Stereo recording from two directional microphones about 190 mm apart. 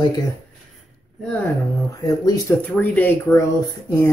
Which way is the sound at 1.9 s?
20° left (ahead or behind).